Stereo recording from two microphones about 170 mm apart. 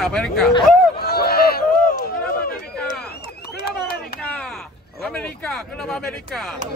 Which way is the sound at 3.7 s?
65° left (ahead or behind).